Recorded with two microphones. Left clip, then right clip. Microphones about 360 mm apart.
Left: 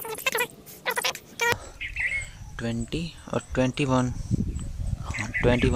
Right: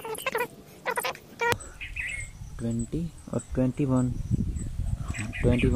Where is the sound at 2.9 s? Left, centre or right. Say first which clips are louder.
Left 4 dB; left.